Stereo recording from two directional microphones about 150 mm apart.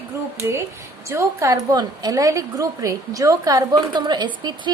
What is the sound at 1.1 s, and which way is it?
A woman's voice, 20° right (ahead or behind).